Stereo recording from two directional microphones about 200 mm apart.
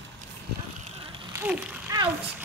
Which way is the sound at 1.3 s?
10° right (ahead or behind).